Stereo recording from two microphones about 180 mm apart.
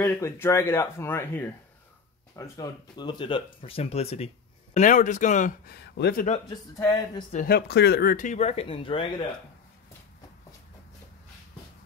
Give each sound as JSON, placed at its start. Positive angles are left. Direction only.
{"t": 0.0, "sound": "speech", "side_deg": 15}
{"t": 5.8, "sound": "speech", "side_deg": 65}
{"t": 6.8, "sound": "speech", "side_deg": 15}
{"t": 7.3, "sound": "speech", "side_deg": 60}